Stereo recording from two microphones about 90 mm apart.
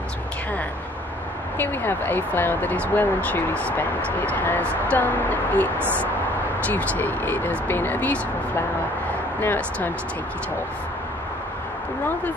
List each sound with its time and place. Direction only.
1.6 s speech: 20° left (ahead or behind)